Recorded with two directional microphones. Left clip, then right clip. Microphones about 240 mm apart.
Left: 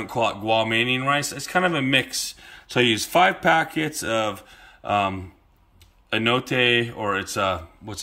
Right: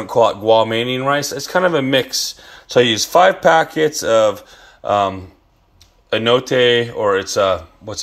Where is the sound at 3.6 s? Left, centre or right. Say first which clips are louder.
Right 10 dB; left.